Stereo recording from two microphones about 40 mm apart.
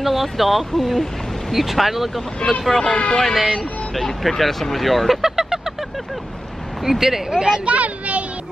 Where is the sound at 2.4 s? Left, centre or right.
Centre.